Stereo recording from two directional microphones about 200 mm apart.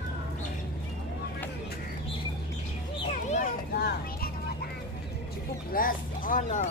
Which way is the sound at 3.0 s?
35° left (ahead or behind).